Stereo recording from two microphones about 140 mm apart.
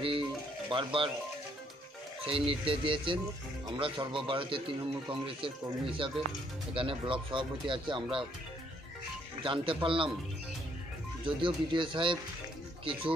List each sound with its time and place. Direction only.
0.7 s a man's voice: 35° right (ahead or behind)
2.2 s a man's voice: 40° right (ahead or behind)
9.4 s a man's voice: 35° right (ahead or behind)
11.2 s a man's voice: 35° right (ahead or behind)